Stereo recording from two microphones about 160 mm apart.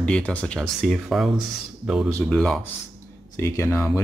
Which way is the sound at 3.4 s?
15° left (ahead or behind).